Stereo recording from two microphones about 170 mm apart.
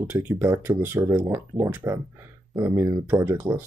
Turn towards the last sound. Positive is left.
turn(degrees=-15)  # may be behind; listen again after turning